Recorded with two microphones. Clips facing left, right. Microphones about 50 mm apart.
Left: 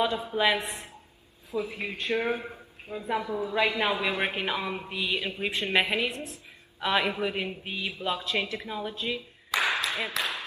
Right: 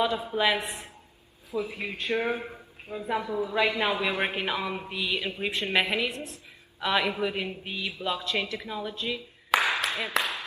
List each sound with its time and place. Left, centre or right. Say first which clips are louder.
0.0 s a woman's voice: even; centre
2.1 s speech: even; right
2.4 s a man's voice: even; centre
9.5 s a sound: right 2 dB; right
10.1 s speech: right 6 dB; right